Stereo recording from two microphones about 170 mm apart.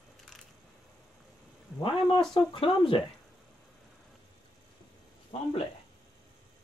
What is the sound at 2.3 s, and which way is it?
Speech, 30° left (ahead or behind).